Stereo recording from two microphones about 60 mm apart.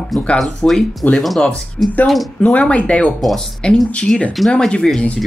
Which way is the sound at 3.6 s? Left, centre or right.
Centre.